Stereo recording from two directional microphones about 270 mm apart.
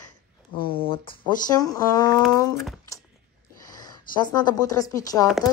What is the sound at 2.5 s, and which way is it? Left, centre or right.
Speech, centre.